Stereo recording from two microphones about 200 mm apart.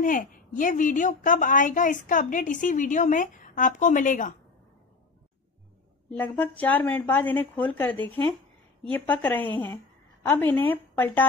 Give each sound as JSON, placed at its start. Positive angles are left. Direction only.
{"t": 0.0, "sound": "a woman's voice", "side_deg": 45}
{"t": 6.0, "sound": "a woman's voice", "side_deg": 5}